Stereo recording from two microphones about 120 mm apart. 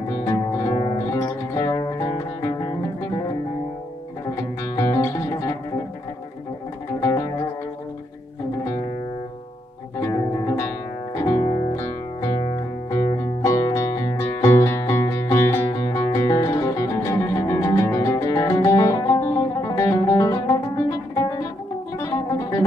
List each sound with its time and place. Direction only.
0.2 s music: 25° left (ahead or behind)
4.7 s music: 25° left (ahead or behind)
7.0 s music: 25° left (ahead or behind)
9.9 s music: 30° left (ahead or behind)
11.7 s music: 25° left (ahead or behind)
12.4 s music: 35° left (ahead or behind)